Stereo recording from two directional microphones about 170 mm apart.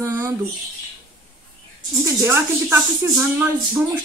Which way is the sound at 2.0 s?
15° right (ahead or behind).